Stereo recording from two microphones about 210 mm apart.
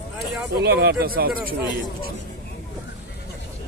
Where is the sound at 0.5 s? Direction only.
50° right (ahead or behind).